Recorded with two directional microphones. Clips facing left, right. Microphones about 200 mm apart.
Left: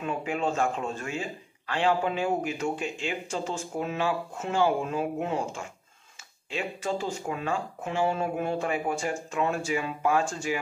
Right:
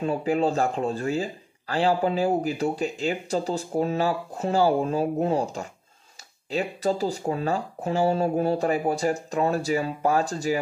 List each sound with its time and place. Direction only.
0.0 s speech: 35° right (ahead or behind)